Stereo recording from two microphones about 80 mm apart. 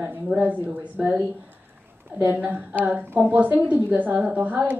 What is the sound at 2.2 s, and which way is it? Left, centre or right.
A woman's voice, right.